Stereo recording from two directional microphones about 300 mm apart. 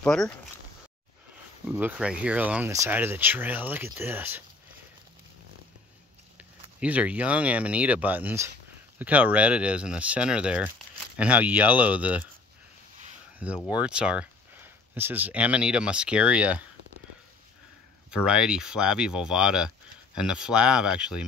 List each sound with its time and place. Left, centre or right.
0.0 s speech: centre
1.7 s speech: centre
6.3 s speech: centre
13.7 s speech: centre
18.1 s speech: centre